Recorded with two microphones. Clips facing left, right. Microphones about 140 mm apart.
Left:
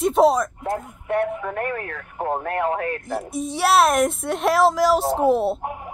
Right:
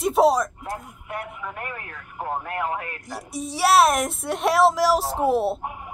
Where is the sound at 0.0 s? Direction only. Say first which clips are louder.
Left 2 dB; centre (ahead or behind).